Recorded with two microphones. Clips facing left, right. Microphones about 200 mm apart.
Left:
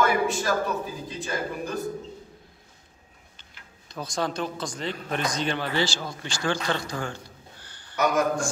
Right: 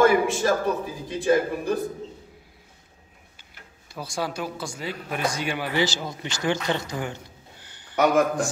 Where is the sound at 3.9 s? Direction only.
10° right (ahead or behind).